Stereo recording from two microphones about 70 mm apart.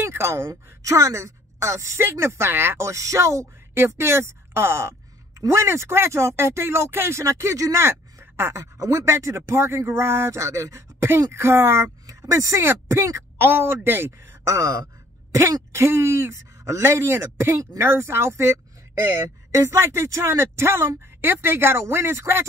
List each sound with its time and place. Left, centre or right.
0.0 s a woman's voice: right
2.0 s speech: right
5.3 s speech: right
7.8 s a sound: right
8.7 s speech: right
9.0 s speech: right
12.1 s speech: right
13.4 s speech: right
15.7 s speech: right
19.1 s speech: right